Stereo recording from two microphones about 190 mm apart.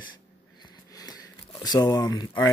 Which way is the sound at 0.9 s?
20° left (ahead or behind).